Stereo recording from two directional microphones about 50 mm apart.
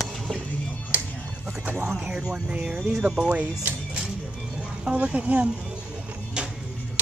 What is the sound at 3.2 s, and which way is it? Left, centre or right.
Speech, right.